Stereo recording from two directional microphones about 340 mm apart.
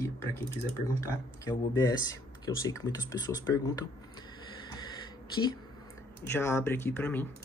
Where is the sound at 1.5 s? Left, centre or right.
Centre.